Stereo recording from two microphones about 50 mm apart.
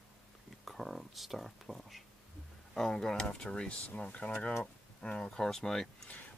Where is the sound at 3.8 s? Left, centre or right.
Left; by 5.9 s centre.